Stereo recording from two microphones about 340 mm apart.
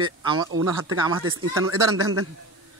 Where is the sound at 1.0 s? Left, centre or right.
Centre.